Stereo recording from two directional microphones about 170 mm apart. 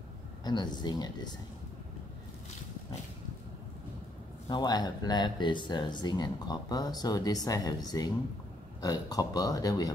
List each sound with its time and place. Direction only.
0.4 s speech: 25° left (ahead or behind)
4.5 s speech: 25° left (ahead or behind)